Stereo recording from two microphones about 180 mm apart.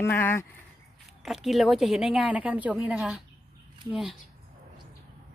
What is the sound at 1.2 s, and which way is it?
A woman's voice, centre (ahead or behind).